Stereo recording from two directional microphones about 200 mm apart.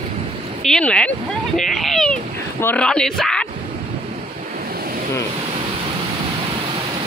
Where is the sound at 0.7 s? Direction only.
5° left (ahead or behind).